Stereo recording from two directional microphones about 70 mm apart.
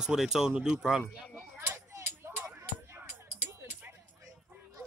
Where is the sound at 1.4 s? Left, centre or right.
Right.